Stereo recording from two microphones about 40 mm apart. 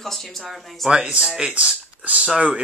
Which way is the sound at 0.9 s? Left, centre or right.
Right.